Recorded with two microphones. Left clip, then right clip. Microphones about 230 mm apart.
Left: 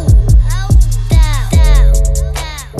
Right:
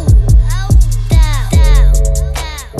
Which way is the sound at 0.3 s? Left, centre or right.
Centre.